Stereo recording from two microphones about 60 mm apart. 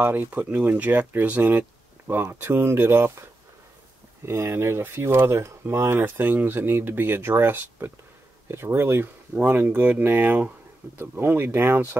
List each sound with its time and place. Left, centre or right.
0.0 s speech: right
4.3 s speech: right
9.3 s speech: right